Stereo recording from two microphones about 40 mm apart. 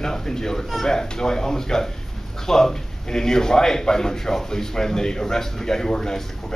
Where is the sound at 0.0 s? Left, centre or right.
Centre.